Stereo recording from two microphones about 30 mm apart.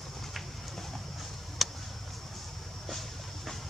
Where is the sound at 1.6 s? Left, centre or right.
Centre.